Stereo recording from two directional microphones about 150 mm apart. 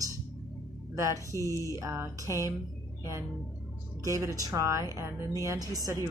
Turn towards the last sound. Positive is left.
turn(degrees=-20)  # may be behind; listen again after turning